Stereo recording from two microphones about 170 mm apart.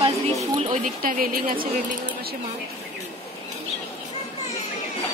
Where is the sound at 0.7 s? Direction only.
50° right (ahead or behind).